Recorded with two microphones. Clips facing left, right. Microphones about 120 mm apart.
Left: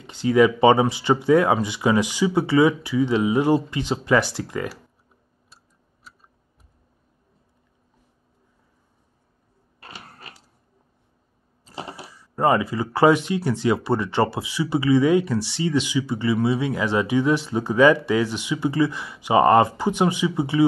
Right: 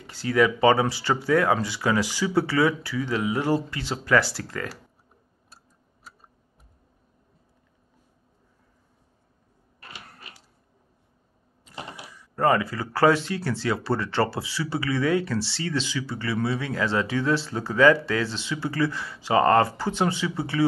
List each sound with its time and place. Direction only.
0.0 s speech: 20° left (ahead or behind)
9.8 s printer: 35° left (ahead or behind)
11.9 s a sound: 35° left (ahead or behind)
12.4 s speech: 20° left (ahead or behind)